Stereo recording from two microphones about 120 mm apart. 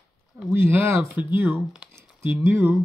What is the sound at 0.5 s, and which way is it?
Speech, 20° right (ahead or behind).